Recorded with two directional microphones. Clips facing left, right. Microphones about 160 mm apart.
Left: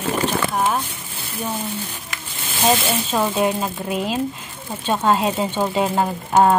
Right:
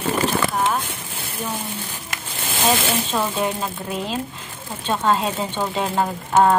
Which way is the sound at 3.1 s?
10° left (ahead or behind).